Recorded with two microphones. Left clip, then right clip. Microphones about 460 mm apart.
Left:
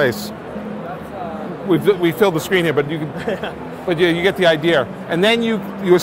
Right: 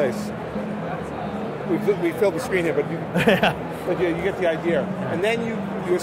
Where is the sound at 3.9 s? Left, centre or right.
Left.